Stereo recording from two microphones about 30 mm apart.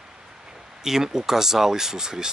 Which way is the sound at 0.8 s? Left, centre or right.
Centre.